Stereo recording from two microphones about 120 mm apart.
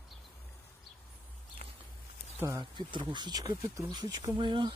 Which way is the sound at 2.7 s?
40° right (ahead or behind).